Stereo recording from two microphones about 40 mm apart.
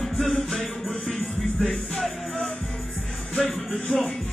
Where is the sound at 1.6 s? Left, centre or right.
Centre.